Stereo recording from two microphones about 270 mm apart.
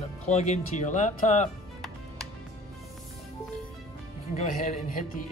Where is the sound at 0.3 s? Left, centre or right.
Left.